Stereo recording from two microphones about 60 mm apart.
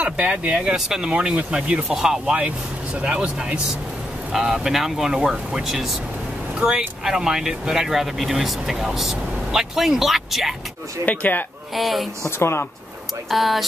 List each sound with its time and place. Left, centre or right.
0.0 s speech: right
0.6 s speech: centre
4.3 s speech: centre
11.1 s speech: left
11.7 s speech: centre
12.3 s a woman's voice: left
13.3 s speech: centre